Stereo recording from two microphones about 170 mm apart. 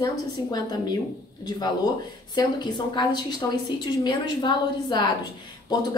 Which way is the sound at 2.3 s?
25° left (ahead or behind).